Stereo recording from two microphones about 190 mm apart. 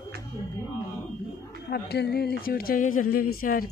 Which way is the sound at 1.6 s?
55° left (ahead or behind).